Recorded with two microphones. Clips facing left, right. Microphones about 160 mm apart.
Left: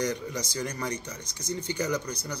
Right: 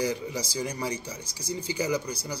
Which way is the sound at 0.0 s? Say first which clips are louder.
Right 1 dB; 10° right (ahead or behind).